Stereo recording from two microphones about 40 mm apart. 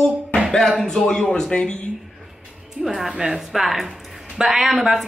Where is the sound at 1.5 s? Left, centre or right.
Left.